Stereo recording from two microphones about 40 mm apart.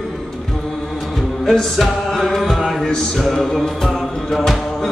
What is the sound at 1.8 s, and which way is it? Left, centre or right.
Music, centre.